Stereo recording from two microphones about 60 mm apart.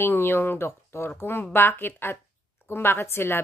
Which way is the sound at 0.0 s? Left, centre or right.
Left.